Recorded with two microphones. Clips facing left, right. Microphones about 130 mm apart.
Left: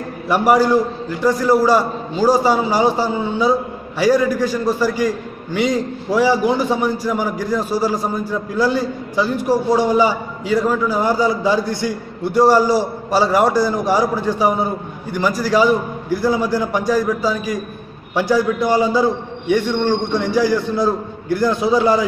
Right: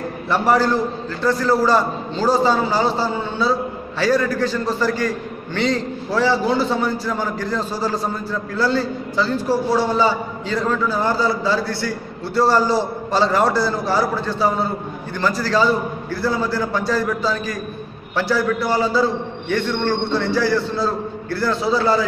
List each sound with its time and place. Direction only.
0.3 s a man's voice: 15° left (ahead or behind)